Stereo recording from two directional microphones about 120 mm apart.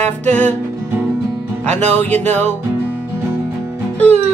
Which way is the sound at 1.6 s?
15° left (ahead or behind).